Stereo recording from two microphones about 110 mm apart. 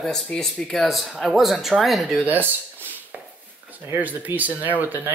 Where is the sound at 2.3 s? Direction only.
15° right (ahead or behind).